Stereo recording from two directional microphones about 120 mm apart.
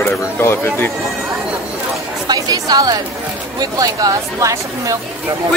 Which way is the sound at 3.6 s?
30° right (ahead or behind).